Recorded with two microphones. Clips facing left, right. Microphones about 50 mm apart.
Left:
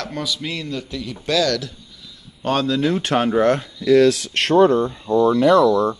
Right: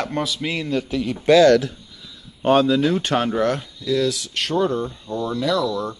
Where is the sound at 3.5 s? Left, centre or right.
Left.